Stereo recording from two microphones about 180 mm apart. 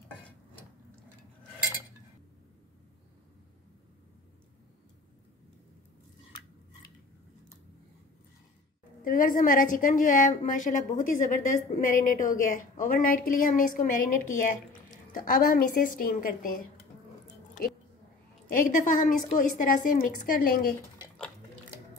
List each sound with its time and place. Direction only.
9.0 s a woman's voice: 50° left (ahead or behind)
18.5 s a woman's voice: 50° left (ahead or behind)